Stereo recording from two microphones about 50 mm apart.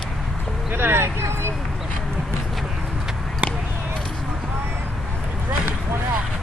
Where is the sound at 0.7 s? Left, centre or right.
Right.